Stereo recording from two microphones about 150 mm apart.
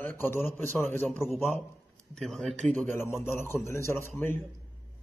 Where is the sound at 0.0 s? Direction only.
15° left (ahead or behind).